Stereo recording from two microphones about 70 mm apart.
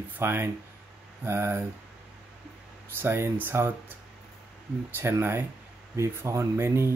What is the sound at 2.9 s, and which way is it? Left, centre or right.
Speech, right.